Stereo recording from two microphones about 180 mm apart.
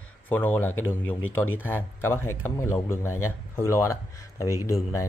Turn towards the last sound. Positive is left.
turn(degrees=15)  # may be behind; listen again after turning